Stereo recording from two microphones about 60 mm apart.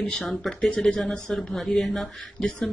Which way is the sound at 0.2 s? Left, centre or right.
Centre.